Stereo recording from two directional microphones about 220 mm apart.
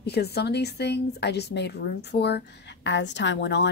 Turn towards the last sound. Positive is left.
turn(degrees=50)  # may be behind; listen again after turning